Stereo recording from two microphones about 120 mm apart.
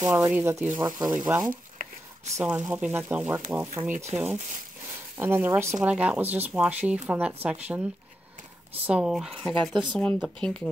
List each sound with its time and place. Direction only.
0.1 s speech: 20° right (ahead or behind)
1.0 s speech: 5° right (ahead or behind)
1.4 s a sound: 90° right
2.4 s speech: 15° right (ahead or behind); by 10.7 s 5° left (ahead or behind)